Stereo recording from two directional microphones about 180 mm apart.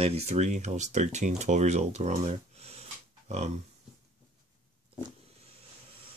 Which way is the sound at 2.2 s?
35° right (ahead or behind).